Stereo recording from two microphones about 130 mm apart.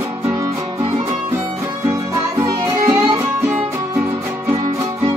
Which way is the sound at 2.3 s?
25° right (ahead or behind).